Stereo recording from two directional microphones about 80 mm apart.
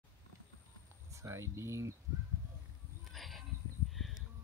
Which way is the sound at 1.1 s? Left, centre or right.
Right.